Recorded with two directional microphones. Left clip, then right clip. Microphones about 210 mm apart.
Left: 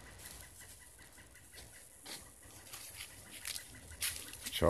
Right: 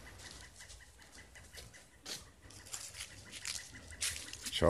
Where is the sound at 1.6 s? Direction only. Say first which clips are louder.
Even; 35° right (ahead or behind).